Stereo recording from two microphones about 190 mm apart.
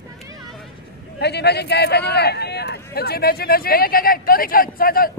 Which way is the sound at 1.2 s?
60° left (ahead or behind).